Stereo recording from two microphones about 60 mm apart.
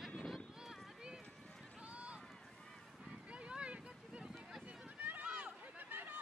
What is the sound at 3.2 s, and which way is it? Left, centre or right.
Boat, centre.